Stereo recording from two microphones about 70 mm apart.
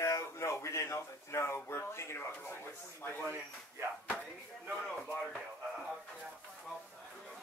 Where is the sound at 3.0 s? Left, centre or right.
Left.